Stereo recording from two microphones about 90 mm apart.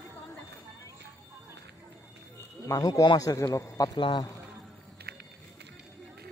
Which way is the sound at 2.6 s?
40° left (ahead or behind).